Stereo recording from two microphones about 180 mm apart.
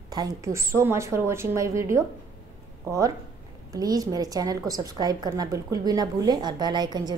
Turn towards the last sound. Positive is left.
turn(degrees=-25)  # may be behind; listen again after turning